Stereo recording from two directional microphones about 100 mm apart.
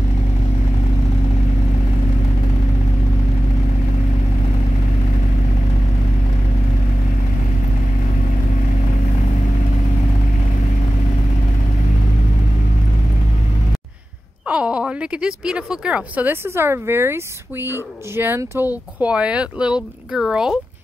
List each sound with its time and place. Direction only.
14.5 s speech: 10° right (ahead or behind)
16.4 s speech: 25° right (ahead or behind)
18.9 s speech: 10° right (ahead or behind)